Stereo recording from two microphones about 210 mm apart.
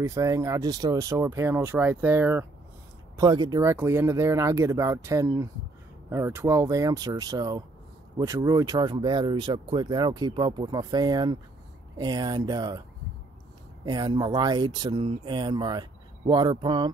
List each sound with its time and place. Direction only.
0.0 s speech: 15° right (ahead or behind)
13.8 s speech: 20° right (ahead or behind)